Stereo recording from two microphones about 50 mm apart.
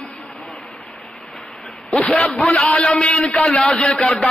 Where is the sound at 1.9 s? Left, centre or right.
Centre.